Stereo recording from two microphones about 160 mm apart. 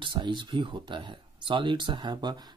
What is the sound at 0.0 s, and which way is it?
Speech, 30° right (ahead or behind).